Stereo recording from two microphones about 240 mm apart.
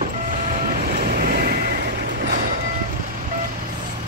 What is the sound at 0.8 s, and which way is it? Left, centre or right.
Vehicle, right.